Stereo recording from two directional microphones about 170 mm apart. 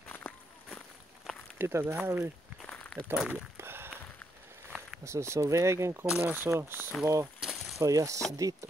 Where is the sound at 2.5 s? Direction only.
5° left (ahead or behind).